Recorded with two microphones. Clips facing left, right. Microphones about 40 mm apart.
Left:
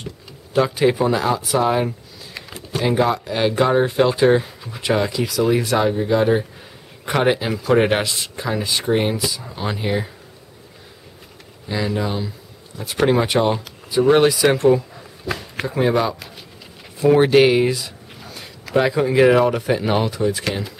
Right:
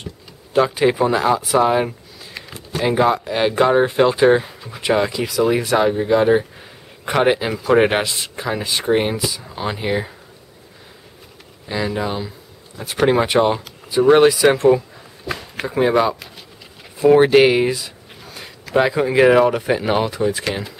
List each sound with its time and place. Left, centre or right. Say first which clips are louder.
0.5 s speech: right 1 dB; centre
11.7 s speech: right 1 dB; centre